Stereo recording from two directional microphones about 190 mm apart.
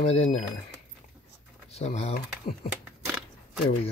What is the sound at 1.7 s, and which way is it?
Speech, 35° left (ahead or behind).